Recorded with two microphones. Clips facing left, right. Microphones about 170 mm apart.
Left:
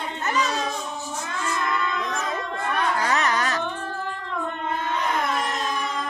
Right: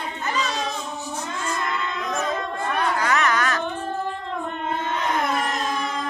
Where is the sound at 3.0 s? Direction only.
30° left (ahead or behind).